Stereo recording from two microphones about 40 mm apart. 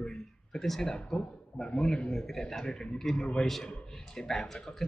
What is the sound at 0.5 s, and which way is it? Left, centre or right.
A man's voice, centre.